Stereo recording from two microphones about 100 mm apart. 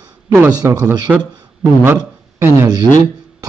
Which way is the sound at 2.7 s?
40° right (ahead or behind).